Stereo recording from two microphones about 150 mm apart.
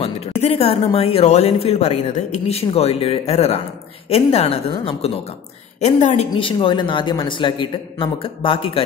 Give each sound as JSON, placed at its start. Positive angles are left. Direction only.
{"t": 0.0, "sound": "a woman's voice", "side_deg": 45}
{"t": 6.3, "sound": "a man's voice", "side_deg": 35}